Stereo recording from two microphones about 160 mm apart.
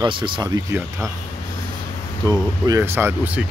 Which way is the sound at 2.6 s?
20° right (ahead or behind).